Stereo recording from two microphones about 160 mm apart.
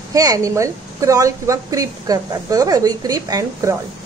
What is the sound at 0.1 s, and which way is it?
A woman's voice, 20° right (ahead or behind).